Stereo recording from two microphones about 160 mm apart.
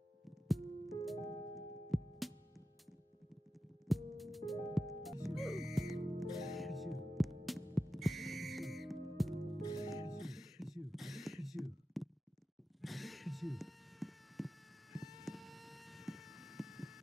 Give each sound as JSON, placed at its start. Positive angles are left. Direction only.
{"t": 0.2, "sound": "music", "side_deg": 0}
{"t": 3.8, "sound": "music", "side_deg": 0}
{"t": 9.6, "sound": "music", "side_deg": 25}
{"t": 10.1, "sound": "a sound", "side_deg": 0}